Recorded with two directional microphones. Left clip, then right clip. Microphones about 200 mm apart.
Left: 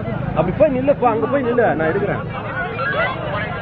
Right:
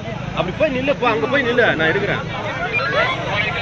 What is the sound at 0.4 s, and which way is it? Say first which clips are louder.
Speech: left 3 dB; 30° left (ahead or behind).